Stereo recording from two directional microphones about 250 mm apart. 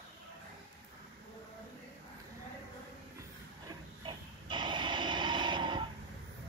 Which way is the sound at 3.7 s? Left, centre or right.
Centre.